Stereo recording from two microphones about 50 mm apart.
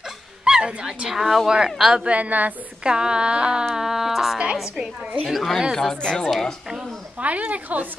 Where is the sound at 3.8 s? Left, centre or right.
Centre.